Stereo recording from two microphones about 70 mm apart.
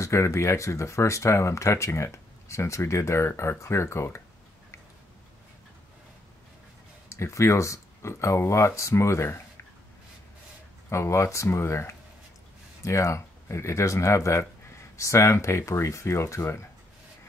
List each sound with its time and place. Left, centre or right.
0.0 s speech: left
7.1 s speech: left
10.9 s speech: left